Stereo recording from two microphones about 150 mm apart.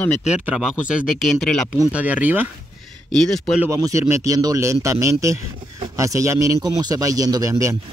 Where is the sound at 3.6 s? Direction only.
20° right (ahead or behind).